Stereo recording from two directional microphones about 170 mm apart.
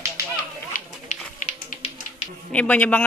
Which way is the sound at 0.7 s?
55° left (ahead or behind).